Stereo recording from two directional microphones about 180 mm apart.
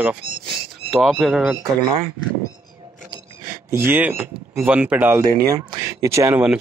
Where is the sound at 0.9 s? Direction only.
Centre (ahead or behind).